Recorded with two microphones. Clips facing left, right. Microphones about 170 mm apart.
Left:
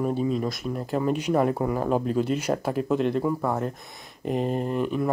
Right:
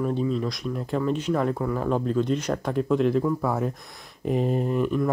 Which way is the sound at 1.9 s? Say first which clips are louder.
Right 2 dB; 10° left (ahead or behind).